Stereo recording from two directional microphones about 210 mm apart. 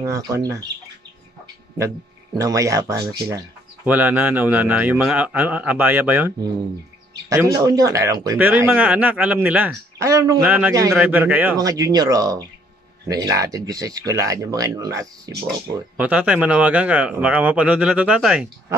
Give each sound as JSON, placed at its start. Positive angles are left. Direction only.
{"t": 0.0, "sound": "speech", "side_deg": -15}
{"t": 2.4, "sound": "speech", "side_deg": -15}
{"t": 16.0, "sound": "speech", "side_deg": -5}